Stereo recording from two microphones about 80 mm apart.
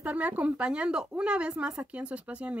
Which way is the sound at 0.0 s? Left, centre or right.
Centre.